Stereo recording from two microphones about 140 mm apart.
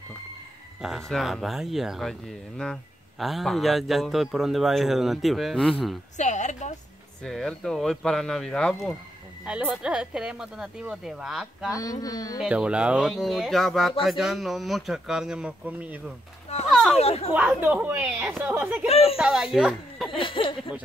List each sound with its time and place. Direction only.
0.8 s speech: centre (ahead or behind)
6.1 s a sound: 60° left (ahead or behind)
7.2 s speech: 5° left (ahead or behind)
9.4 s speech: 5° right (ahead or behind)
11.7 s speech: 25° left (ahead or behind)
12.4 s speech: 5° right (ahead or behind)
16.7 s a sound: centre (ahead or behind)
17.0 s speech: 50° left (ahead or behind)
17.3 s speech: 10° right (ahead or behind)
18.9 s speech: 45° left (ahead or behind)
19.1 s speech: 5° right (ahead or behind)
20.2 s speech: 40° left (ahead or behind)